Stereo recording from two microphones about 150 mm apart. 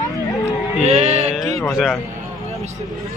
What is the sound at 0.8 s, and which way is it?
Speech, 45° right (ahead or behind).